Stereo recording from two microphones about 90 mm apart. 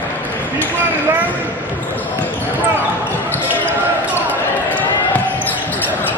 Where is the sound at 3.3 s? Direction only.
20° left (ahead or behind).